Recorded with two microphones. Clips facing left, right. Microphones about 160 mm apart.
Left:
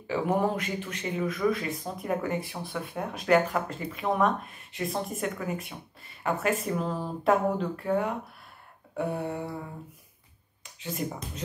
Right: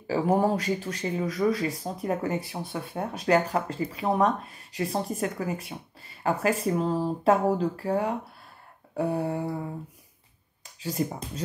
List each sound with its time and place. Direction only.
0.0 s speech: 35° right (ahead or behind)
10.6 s speech: 30° right (ahead or behind)